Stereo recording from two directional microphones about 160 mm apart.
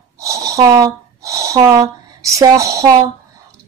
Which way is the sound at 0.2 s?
20° right (ahead or behind).